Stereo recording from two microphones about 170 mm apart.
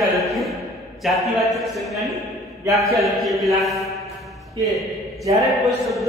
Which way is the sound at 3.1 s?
Centre (ahead or behind).